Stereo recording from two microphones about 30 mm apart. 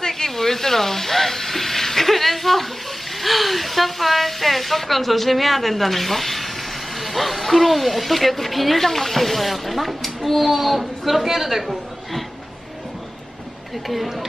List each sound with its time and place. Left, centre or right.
0.1 s a sound: centre
3.2 s a woman's voice: centre
13.8 s speech: centre